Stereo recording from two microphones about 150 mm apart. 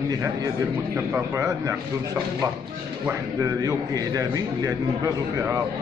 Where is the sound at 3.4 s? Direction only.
25° right (ahead or behind).